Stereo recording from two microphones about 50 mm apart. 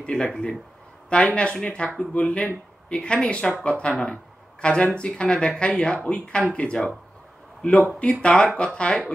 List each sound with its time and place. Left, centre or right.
0.0 s speech: left
0.3 s speech: centre
1.1 s speech: left